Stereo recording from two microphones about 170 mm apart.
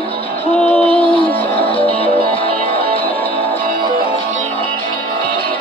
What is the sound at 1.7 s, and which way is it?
Music, 35° left (ahead or behind).